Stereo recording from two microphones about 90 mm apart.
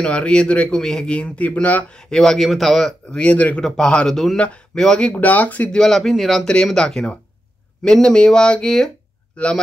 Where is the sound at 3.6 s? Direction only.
5° left (ahead or behind).